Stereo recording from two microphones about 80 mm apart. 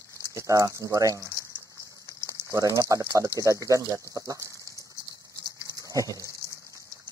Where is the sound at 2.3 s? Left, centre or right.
Right.